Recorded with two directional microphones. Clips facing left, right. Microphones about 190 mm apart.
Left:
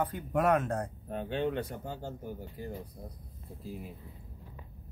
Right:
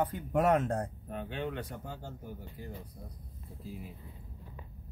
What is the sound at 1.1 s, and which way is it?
Speech, 30° left (ahead or behind).